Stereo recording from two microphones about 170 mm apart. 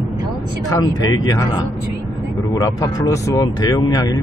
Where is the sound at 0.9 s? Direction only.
20° left (ahead or behind).